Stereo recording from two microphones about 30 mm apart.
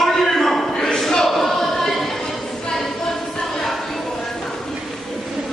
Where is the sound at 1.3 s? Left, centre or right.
Centre.